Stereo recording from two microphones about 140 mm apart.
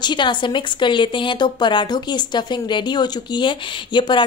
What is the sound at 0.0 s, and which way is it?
Speech, 35° left (ahead or behind).